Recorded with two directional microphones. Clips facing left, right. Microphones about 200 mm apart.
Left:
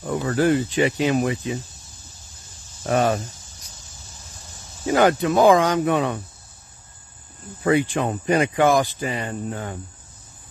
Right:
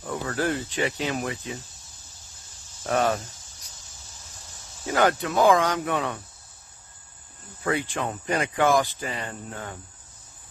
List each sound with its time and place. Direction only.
0.3 s speech: 10° left (ahead or behind)
2.9 s speech: 15° left (ahead or behind)
4.8 s speech: 15° left (ahead or behind)
7.6 s speech: 20° left (ahead or behind)